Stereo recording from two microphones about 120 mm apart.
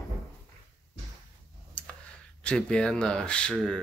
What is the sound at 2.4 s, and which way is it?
Speech, 5° left (ahead or behind).